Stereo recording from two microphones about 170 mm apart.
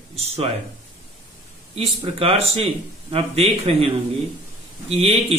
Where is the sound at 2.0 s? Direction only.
35° right (ahead or behind).